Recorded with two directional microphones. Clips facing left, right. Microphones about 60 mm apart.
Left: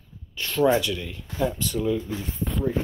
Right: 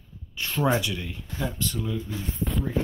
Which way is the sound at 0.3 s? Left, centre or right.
Centre.